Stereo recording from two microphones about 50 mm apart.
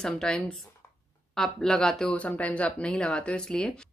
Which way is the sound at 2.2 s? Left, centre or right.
Left.